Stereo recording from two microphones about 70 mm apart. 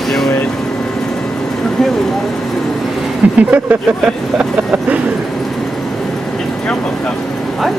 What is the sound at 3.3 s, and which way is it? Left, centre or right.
Speech, right.